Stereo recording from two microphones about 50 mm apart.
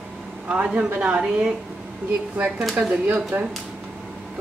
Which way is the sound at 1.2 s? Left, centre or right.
Centre.